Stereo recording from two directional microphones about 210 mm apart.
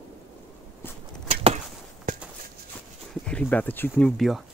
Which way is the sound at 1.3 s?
30° right (ahead or behind).